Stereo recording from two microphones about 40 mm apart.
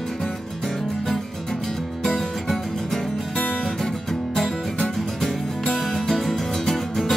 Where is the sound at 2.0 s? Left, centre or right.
Centre.